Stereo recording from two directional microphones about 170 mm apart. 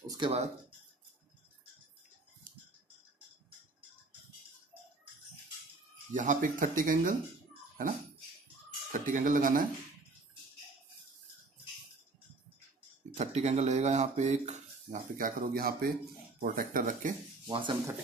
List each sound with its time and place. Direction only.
0.2 s speech: 30° right (ahead or behind)
6.1 s speech: 50° right (ahead or behind)
8.9 s speech: 50° right (ahead or behind)
13.1 s speech: 40° right (ahead or behind)
17.5 s speech: 30° right (ahead or behind)